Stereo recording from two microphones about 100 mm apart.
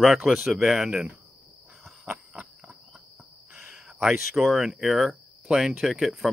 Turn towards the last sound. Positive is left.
turn(degrees=0)  # may be behind; listen again after turning